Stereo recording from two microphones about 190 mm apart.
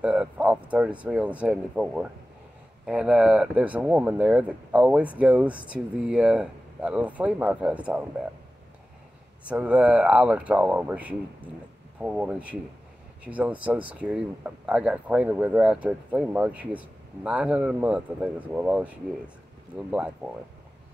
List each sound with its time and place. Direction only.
0.0 s speech: 5° right (ahead or behind)
9.5 s speech: 5° right (ahead or behind)